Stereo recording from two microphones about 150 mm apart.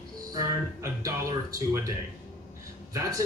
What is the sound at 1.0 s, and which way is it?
Speech, 20° right (ahead or behind).